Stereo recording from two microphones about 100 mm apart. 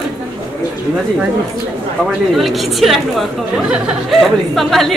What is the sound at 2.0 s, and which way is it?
Speech, centre (ahead or behind).